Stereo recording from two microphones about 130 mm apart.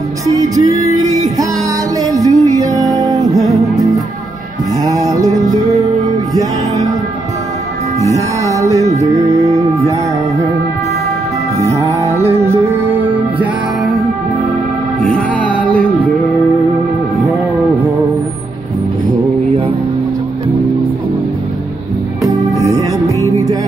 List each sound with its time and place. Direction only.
0.4 s music: 25° right (ahead or behind)
4.8 s music: 25° right (ahead or behind)
8.0 s music: 25° right (ahead or behind)
11.5 s music: 25° right (ahead or behind)
15.0 s music: 5° left (ahead or behind)
22.6 s music: 25° right (ahead or behind)